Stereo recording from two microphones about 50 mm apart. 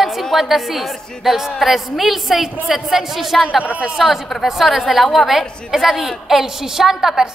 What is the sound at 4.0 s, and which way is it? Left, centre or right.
A woman's voice, centre.